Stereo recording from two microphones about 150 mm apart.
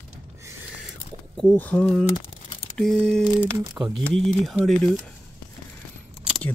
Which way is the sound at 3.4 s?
15° right (ahead or behind).